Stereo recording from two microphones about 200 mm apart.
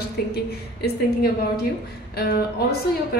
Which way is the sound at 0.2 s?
50° left (ahead or behind).